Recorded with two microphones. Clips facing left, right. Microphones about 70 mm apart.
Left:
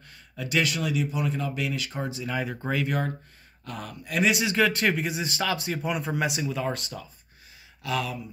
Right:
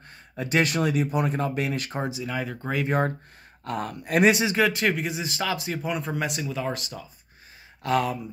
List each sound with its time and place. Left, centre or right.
0.4 s speech: right
2.0 s speech: centre
2.3 s speech: centre
3.6 s speech: right
4.6 s speech: centre
7.8 s speech: right